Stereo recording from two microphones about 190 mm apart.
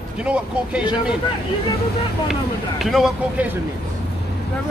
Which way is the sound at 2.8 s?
Centre (ahead or behind).